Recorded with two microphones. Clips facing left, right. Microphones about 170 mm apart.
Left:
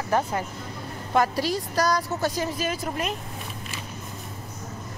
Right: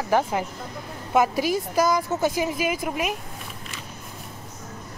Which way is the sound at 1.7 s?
10° right (ahead or behind).